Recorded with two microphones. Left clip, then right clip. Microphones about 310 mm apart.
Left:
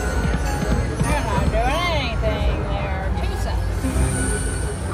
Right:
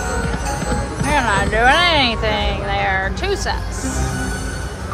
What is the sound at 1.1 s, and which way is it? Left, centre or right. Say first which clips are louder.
Music: right 8 dB; right.